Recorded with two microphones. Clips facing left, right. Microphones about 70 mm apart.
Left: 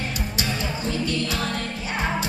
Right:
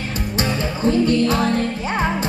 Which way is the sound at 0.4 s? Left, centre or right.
Right.